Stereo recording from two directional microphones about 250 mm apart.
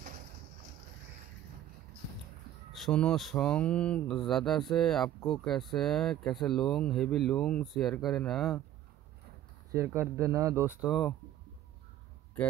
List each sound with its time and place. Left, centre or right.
2.7 s mantra: centre
9.7 s speech: centre